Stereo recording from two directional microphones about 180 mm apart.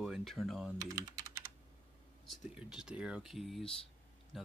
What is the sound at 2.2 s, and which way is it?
Speech, centre (ahead or behind).